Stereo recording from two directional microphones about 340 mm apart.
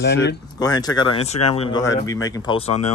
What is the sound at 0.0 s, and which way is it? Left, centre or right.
Speech, left.